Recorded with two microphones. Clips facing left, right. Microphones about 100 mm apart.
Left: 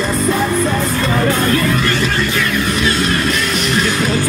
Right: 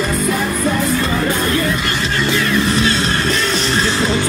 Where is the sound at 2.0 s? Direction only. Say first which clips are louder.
Even; 30° right (ahead or behind).